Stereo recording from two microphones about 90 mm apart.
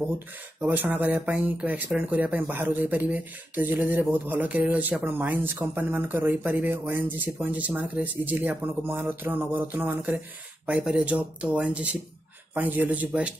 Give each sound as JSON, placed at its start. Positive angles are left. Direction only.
{"t": 0.6, "sound": "speech", "side_deg": -20}